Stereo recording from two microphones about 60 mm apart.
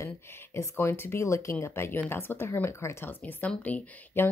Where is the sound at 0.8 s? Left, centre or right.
Left.